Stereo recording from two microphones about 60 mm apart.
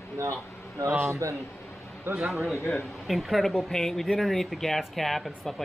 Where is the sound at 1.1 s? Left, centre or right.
Right.